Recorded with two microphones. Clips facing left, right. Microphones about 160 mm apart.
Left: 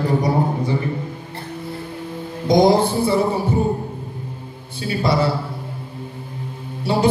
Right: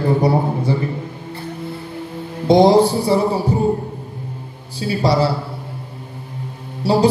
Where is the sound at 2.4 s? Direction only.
30° right (ahead or behind).